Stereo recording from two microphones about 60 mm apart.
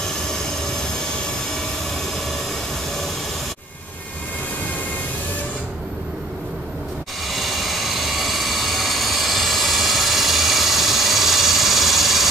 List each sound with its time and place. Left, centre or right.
7.2 s vehicle: centre